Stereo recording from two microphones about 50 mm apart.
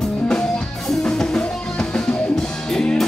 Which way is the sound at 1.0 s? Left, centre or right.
Centre.